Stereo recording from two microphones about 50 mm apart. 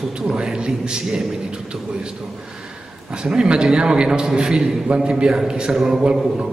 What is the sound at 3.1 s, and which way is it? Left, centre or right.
A man's voice, centre.